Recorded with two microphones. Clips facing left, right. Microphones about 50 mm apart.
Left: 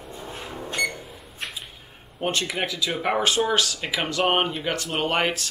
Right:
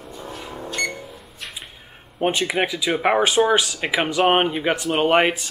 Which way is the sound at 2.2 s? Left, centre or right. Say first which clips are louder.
Right 5 dB; centre.